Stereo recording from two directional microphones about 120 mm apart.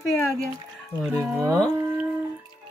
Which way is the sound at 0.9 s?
20° right (ahead or behind).